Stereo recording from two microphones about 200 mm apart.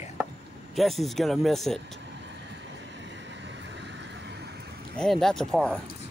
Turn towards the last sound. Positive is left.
turn(degrees=5)  # may be behind; listen again after turning